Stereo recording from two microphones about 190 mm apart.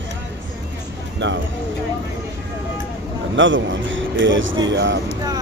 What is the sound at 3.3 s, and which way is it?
Speech, 80° right.